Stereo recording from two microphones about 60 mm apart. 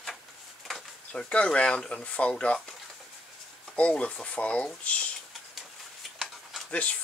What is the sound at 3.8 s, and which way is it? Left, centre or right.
Speech, centre.